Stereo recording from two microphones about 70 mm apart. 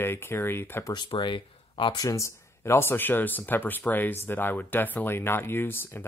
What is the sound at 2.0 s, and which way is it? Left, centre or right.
Speech, left.